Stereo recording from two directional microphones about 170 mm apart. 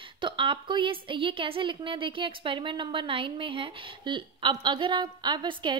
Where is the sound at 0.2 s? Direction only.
30° right (ahead or behind).